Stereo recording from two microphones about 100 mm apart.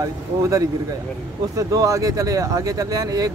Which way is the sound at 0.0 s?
35° right (ahead or behind).